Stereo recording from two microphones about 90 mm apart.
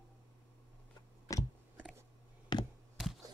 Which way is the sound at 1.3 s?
35° left (ahead or behind).